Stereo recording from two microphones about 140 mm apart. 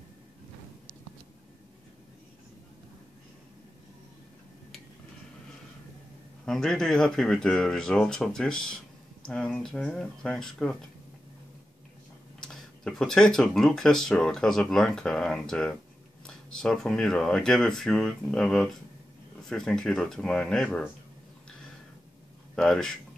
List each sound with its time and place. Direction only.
6.4 s speech: 5° left (ahead or behind)
12.4 s speech: 5° left (ahead or behind)
22.6 s speech: 5° left (ahead or behind)